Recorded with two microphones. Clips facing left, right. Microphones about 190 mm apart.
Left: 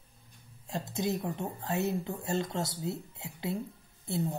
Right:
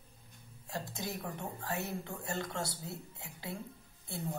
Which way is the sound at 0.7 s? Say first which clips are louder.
Left 8 dB; 20° left (ahead or behind).